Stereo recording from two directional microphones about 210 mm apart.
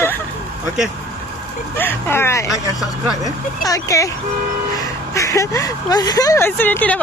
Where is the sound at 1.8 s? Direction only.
10° left (ahead or behind).